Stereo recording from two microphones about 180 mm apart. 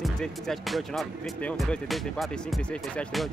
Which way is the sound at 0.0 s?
Centre (ahead or behind).